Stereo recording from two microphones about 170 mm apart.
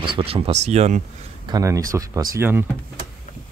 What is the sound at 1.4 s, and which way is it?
Speech, 20° right (ahead or behind).